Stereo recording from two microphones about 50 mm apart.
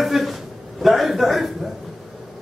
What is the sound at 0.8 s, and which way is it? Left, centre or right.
Speech, centre.